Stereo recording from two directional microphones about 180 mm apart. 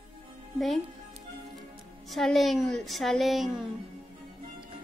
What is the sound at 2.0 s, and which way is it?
Speech, centre (ahead or behind).